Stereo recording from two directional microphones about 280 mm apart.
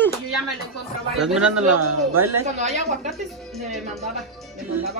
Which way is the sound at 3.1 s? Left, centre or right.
Centre.